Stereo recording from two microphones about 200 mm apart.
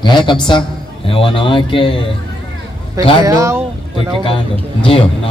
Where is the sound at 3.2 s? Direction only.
15° right (ahead or behind).